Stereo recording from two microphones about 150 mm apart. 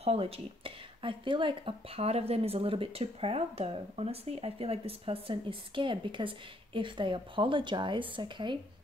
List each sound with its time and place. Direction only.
0.0 s speech: 40° right (ahead or behind)